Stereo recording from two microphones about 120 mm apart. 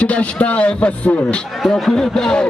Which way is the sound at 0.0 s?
10° left (ahead or behind).